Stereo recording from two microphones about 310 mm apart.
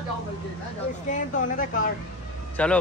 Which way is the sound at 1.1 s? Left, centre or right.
Left.